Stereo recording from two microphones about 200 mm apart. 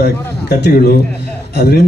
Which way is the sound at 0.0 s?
55° left (ahead or behind).